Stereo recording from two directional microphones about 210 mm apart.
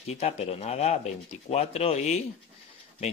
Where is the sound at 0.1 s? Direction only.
30° left (ahead or behind).